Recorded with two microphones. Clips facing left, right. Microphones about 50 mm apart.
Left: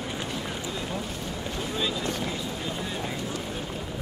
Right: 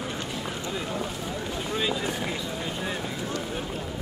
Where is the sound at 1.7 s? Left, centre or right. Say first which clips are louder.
Right 2 dB; centre.